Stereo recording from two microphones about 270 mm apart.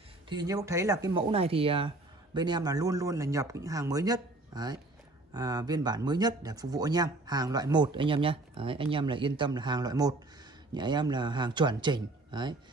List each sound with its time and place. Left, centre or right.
0.3 s speech: centre